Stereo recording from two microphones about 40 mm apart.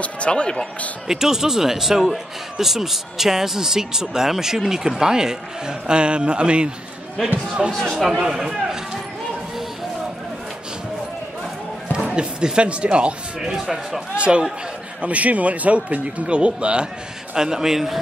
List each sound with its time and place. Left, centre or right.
0.0 s speech: left
1.0 s speech: centre
7.7 s a man's voice: centre
8.2 s a sound: centre
11.9 s a man's voice: right
16.3 s a man's voice: right
17.4 s speech: centre